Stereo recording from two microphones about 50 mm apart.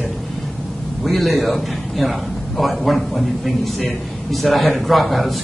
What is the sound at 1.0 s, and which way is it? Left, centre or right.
A man's voice, centre.